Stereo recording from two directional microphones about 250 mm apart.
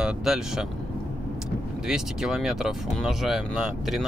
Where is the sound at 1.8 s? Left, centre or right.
Centre.